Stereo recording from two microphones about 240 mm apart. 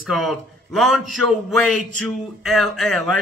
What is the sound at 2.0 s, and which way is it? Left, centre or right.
Speech, centre.